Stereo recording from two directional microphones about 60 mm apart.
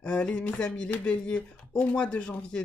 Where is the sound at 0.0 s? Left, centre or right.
Left.